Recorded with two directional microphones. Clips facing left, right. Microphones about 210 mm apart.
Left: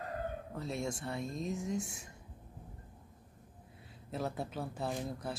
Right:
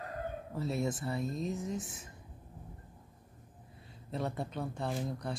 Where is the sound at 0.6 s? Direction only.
5° right (ahead or behind).